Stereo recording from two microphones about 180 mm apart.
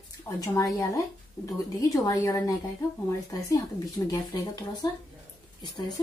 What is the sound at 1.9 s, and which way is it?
Speech, 20° left (ahead or behind).